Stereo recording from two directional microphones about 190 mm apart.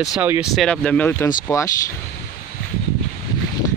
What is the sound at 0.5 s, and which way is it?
Speech, 5° left (ahead or behind).